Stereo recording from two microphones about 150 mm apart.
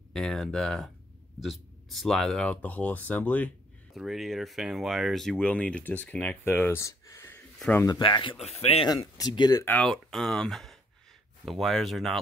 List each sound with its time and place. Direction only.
0.1 s speech: 5° left (ahead or behind)
3.9 s speech: centre (ahead or behind); by 7.4 s 15° left (ahead or behind)
7.5 s speech: 5° left (ahead or behind)
7.8 s speech: 30° left (ahead or behind); by 8.8 s 45° left (ahead or behind)
8.8 s speech: 25° left (ahead or behind)
9.7 s speech: 5° left (ahead or behind)